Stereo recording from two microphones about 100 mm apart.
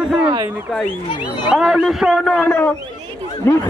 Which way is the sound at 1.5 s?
Centre (ahead or behind).